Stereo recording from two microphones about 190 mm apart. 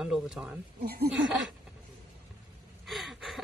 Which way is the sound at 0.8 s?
55° right (ahead or behind).